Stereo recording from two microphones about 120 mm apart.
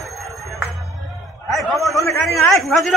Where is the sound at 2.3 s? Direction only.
25° left (ahead or behind).